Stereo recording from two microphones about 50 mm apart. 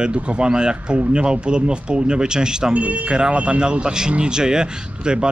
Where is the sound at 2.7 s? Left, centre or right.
Right.